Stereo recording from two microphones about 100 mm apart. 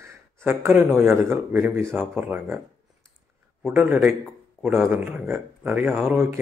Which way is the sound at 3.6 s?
20° right (ahead or behind).